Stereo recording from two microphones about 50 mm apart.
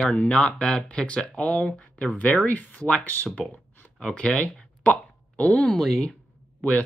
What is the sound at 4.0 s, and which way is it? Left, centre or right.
Speech, left.